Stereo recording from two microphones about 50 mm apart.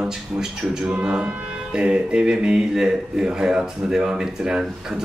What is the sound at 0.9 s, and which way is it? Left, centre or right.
Music, right.